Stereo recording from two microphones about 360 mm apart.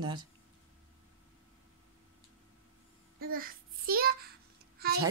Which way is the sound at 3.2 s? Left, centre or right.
Right.